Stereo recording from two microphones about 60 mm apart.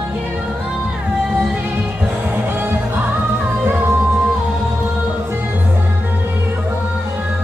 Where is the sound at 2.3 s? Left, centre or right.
Right.